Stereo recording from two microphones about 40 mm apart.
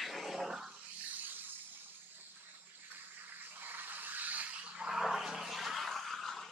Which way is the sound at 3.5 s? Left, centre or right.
Right.